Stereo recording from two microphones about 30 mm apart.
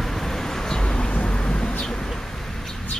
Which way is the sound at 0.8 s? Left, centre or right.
Left.